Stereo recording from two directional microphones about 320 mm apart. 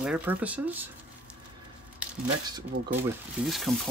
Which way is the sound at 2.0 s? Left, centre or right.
Centre.